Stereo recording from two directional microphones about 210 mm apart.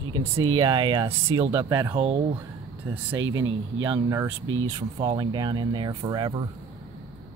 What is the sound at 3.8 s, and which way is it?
Speech, 15° right (ahead or behind).